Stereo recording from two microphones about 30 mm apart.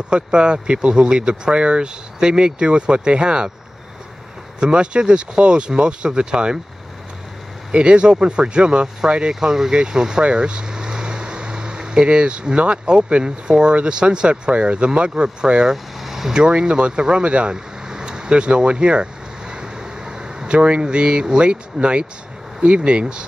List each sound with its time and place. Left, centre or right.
0.1 s speech: right
4.6 s speech: right
7.7 s speech: right
9.3 s speech: centre
10.2 s a sound: right
12.1 s speech: right
15.7 s vehicle: centre
16.3 s speech: right
17.2 s speech: right
17.5 s vehicle: right
22.8 s speech: right